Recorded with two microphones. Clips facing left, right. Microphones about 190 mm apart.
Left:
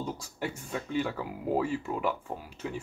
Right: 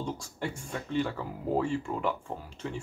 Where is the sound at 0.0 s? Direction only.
5° left (ahead or behind).